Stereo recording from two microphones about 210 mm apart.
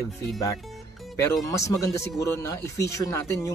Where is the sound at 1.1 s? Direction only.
15° left (ahead or behind).